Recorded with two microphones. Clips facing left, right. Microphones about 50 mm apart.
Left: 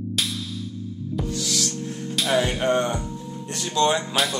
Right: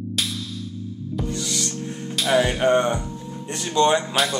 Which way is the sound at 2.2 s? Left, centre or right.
Centre.